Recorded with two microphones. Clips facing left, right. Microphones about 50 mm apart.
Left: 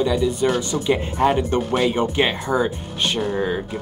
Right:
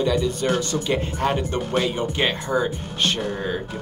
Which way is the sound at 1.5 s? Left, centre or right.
Left.